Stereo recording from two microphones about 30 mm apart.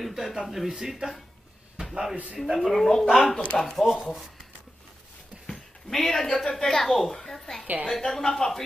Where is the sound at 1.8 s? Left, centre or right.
Right.